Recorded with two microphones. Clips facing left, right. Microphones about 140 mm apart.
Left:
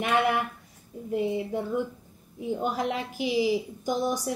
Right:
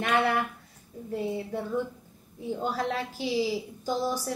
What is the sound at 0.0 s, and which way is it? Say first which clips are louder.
A woman's voice: left 1 dB; 10° left (ahead or behind).